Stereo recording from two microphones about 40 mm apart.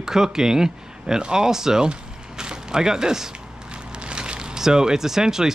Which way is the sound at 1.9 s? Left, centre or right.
Right.